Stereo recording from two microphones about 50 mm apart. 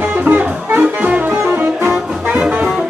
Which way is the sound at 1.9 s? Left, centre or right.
Right.